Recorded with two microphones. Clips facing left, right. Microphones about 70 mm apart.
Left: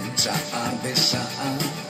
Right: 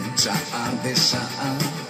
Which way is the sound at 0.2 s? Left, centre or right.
Centre.